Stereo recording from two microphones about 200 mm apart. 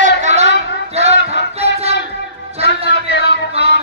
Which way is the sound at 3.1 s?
60° left (ahead or behind).